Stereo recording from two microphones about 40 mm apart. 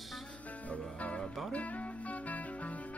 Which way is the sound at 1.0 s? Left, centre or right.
Left.